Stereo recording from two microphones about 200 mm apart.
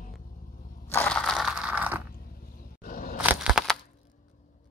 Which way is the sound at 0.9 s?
10° left (ahead or behind).